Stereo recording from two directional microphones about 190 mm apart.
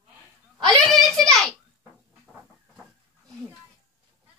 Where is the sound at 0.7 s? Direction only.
Centre (ahead or behind).